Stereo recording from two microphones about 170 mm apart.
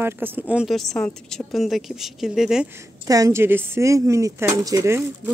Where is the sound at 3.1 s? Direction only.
20° right (ahead or behind).